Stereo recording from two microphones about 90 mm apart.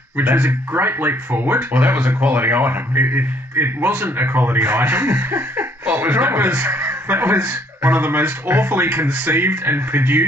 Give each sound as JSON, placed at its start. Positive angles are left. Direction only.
{"t": 0.2, "sound": "speech", "side_deg": -25}